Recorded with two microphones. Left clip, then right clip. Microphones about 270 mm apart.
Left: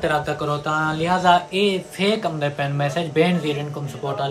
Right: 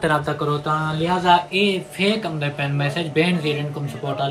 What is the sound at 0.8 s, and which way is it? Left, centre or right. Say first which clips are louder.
Speech: left 3 dB; centre.